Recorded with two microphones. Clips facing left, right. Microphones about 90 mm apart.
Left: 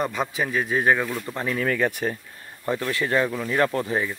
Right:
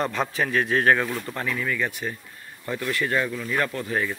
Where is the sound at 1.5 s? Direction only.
50° left (ahead or behind).